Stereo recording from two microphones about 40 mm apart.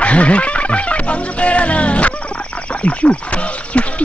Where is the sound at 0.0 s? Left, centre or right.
Left.